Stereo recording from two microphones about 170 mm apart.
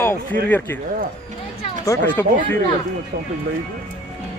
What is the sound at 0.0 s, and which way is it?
Speech, 10° left (ahead or behind).